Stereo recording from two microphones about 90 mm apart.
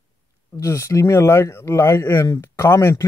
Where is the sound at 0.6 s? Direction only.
35° left (ahead or behind).